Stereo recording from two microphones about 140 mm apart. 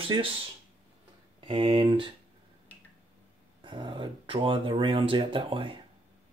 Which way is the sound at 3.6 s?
35° right (ahead or behind).